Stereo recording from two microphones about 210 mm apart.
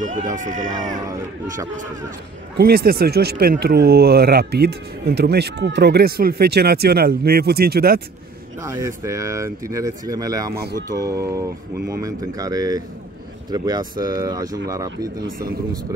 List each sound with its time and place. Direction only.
0.0 s speech: 35° right (ahead or behind)
2.5 s speech: 45° right (ahead or behind)
8.6 s speech: 15° right (ahead or behind)
10.5 s speech: 50° right (ahead or behind)
10.9 s speech: 15° right (ahead or behind)